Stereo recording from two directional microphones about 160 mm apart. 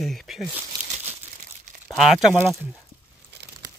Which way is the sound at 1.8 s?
Centre (ahead or behind).